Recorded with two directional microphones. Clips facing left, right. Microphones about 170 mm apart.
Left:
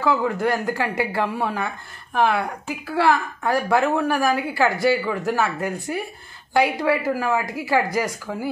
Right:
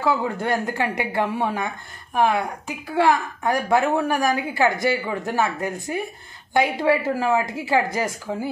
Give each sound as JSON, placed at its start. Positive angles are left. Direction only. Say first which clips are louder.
{"t": 0.0, "sound": "a woman's voice", "louder": "left 2 dB", "side_deg": -25}